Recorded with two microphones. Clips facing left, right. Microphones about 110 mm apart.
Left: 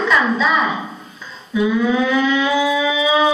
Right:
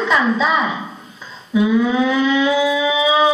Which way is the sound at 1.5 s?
20° right (ahead or behind).